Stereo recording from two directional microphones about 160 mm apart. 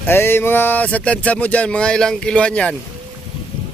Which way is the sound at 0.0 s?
15° left (ahead or behind).